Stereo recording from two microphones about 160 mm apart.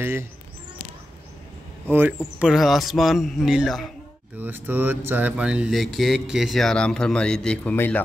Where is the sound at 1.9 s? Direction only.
15° right (ahead or behind).